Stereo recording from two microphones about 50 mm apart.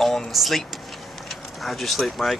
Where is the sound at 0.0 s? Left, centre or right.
Centre.